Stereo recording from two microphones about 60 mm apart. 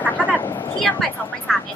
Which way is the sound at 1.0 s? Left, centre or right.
Centre.